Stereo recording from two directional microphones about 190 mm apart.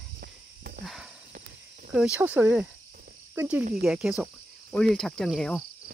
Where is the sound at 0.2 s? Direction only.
45° right (ahead or behind).